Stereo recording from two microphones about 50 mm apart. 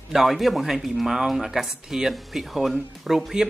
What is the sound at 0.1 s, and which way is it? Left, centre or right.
Speech, centre.